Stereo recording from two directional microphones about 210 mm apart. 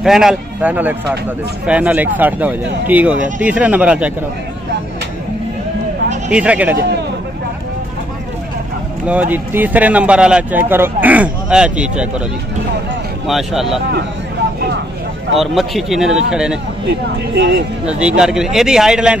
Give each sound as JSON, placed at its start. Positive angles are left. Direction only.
{"t": 0.0, "sound": "speech", "side_deg": 0}
{"t": 6.3, "sound": "speech", "side_deg": -5}
{"t": 9.0, "sound": "speech", "side_deg": -5}
{"t": 13.3, "sound": "speech", "side_deg": 0}
{"t": 15.3, "sound": "speech", "side_deg": 0}
{"t": 17.3, "sound": "speech", "side_deg": -55}
{"t": 17.8, "sound": "speech", "side_deg": -5}